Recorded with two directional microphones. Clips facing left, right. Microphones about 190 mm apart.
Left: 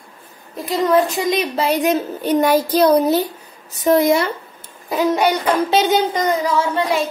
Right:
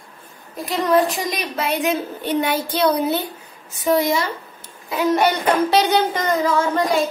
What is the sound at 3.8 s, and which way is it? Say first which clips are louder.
Child singing: left 4 dB; 50° left (ahead or behind).